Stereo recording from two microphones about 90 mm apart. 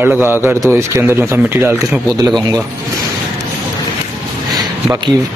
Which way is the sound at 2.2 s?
45° right (ahead or behind).